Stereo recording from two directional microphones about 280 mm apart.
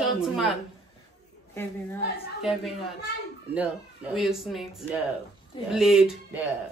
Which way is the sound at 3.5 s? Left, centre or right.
Centre.